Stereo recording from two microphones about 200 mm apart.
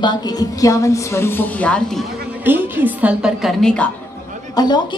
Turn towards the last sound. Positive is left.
turn(degrees=20)  # may be behind; listen again after turning